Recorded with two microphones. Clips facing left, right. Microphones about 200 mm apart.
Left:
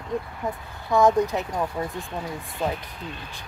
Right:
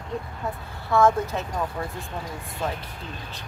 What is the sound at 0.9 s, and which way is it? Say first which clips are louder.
Speech: left 1 dB; 15° left (ahead or behind).